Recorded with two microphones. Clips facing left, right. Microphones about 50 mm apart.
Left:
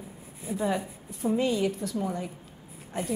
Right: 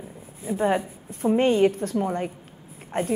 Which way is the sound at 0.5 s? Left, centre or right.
Right.